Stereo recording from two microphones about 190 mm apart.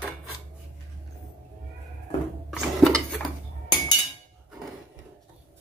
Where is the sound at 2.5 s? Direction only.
Centre (ahead or behind).